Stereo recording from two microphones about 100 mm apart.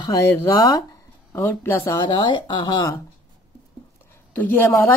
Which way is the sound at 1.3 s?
25° left (ahead or behind).